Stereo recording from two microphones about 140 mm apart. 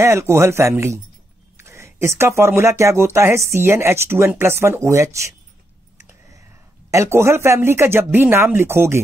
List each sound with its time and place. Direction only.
0.0 s speech: 20° right (ahead or behind)
5.9 s a sound: 20° right (ahead or behind)
6.9 s speech: 20° right (ahead or behind)